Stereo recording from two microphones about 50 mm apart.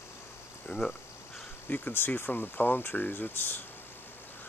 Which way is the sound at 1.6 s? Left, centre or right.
Left.